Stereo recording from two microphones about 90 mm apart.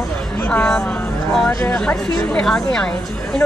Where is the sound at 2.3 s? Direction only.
10° left (ahead or behind).